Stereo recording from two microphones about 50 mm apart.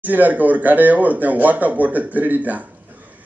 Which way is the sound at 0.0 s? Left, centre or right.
Right.